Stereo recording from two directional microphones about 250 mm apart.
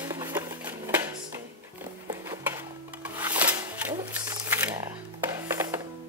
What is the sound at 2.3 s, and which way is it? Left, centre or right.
Music, centre.